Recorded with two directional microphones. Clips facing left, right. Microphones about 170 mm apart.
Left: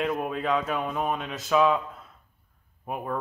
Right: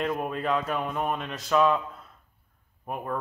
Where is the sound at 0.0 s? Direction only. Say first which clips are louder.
Left 1 dB; centre (ahead or behind).